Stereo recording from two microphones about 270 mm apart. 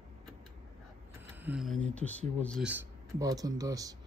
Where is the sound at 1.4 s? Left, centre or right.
Centre.